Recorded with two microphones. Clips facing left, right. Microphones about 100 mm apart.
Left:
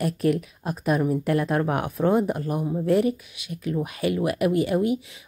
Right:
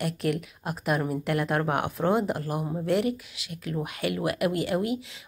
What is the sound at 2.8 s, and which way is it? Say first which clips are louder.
Speech: left 4 dB; 30° left (ahead or behind).